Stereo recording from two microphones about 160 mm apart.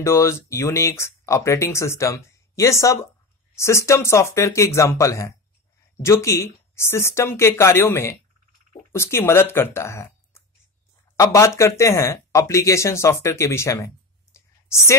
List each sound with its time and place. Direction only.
0.0 s speech: 15° left (ahead or behind)